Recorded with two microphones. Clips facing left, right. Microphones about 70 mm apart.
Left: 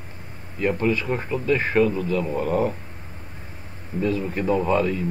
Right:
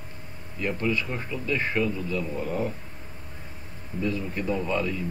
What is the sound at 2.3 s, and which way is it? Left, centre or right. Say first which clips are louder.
Speech: left 8 dB; left.